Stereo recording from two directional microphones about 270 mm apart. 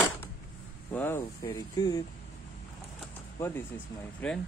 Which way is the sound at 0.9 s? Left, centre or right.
Centre.